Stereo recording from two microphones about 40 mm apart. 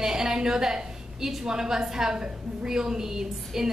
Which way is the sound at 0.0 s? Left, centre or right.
Centre.